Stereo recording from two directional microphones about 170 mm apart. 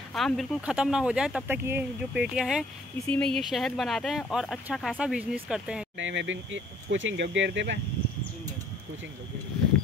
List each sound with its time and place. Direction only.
0.1 s speech: centre (ahead or behind)
5.9 s speech: 90° right